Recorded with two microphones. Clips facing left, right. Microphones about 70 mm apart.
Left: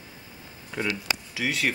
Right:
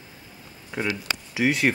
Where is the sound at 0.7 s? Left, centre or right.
Centre.